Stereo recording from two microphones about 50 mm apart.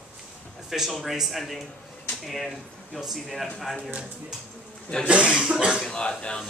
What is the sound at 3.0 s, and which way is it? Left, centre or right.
Speech, centre.